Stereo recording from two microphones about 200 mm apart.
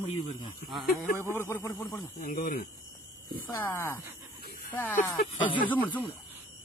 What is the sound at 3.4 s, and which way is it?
Speech, 10° left (ahead or behind).